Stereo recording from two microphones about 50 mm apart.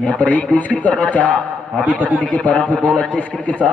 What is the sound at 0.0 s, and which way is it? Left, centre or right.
A man's voice, left.